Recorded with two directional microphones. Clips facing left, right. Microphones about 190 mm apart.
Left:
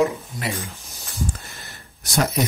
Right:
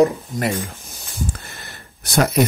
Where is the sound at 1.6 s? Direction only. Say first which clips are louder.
Right 3 dB; 60° right (ahead or behind).